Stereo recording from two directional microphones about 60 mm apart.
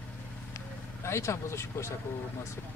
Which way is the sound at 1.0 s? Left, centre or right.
Left.